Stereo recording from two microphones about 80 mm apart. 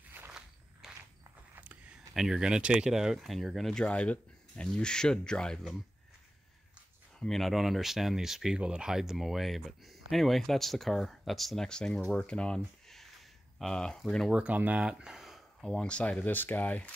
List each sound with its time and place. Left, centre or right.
0.8 s mechanisms: centre
1.5 s speech: centre
7.2 s speech: centre
14.3 s speech: centre
15.9 s speech: centre